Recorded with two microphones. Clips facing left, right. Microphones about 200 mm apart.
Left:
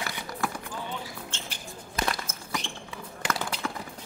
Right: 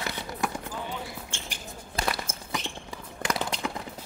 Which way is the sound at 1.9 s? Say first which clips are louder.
Even; 25° right (ahead or behind).